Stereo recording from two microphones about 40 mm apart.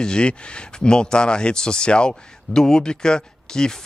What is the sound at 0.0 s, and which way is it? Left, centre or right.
A man's voice, left.